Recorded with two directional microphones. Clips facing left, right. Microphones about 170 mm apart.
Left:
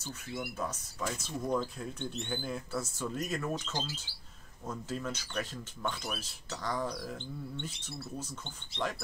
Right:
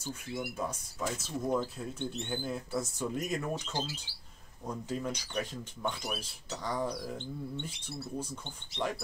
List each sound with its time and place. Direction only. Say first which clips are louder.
0.0 s speech: right 2 dB; 10° right (ahead or behind)
2.7 s speech: right 4 dB; 20° right (ahead or behind)